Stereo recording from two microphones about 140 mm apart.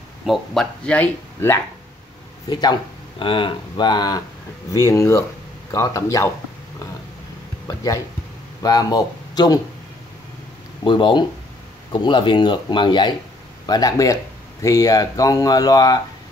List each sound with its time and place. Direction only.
0.2 s speech: centre (ahead or behind)
2.5 s speech: 30° left (ahead or behind)
7.6 s speech: 25° left (ahead or behind)
10.8 s speech: 35° left (ahead or behind)